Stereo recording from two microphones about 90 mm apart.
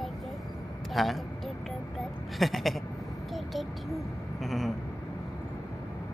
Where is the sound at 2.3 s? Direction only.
Centre (ahead or behind).